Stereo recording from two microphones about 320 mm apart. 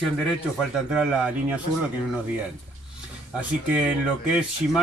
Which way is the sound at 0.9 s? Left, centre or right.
Centre.